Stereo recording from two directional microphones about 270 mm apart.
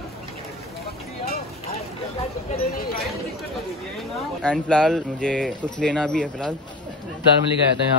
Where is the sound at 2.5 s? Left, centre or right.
Left.